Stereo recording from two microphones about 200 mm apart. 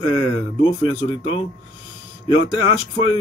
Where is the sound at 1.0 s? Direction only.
25° left (ahead or behind).